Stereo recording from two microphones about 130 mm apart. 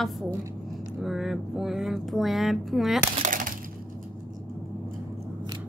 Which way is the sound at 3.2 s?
90° right.